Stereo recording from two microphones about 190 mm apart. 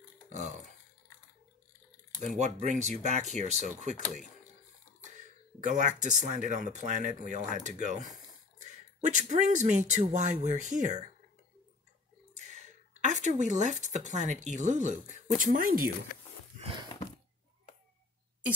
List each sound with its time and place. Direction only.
0.3 s burping: 40° right (ahead or behind)
2.1 s speech: 40° right (ahead or behind)
5.6 s speech: 40° right (ahead or behind)
12.4 s a sound: 40° right (ahead or behind)
14.6 s speech: 40° right (ahead or behind)